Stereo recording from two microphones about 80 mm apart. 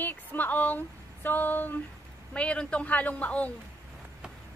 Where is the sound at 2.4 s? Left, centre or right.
Centre.